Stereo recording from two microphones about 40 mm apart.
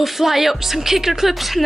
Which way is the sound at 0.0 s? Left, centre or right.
Centre.